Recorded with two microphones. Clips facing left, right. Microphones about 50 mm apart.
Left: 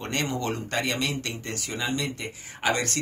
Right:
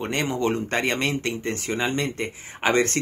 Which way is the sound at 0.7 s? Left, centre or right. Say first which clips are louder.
Right 4 dB; right.